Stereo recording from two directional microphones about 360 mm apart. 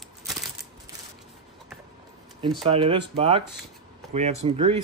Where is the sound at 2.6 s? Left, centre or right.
Centre.